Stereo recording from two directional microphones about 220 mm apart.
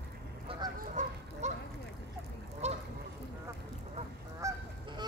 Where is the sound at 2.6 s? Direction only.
30° right (ahead or behind).